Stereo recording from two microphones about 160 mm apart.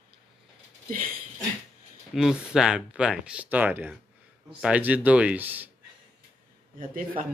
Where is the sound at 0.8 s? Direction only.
60° right (ahead or behind).